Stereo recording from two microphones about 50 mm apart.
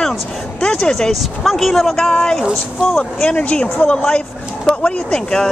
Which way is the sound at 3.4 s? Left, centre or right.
Left.